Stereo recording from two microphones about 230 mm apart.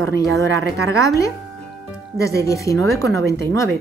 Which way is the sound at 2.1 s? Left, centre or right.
Centre.